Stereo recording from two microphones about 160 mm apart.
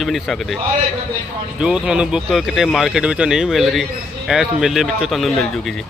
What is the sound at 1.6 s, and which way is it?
Speech, 5° right (ahead or behind).